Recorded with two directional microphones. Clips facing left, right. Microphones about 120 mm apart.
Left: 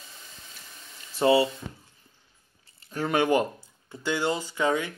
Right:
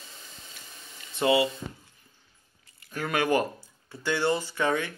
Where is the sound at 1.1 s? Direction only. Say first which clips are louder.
Left 3 dB; 30° left (ahead or behind).